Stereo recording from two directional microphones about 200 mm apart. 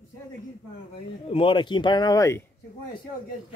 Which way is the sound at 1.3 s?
25° left (ahead or behind).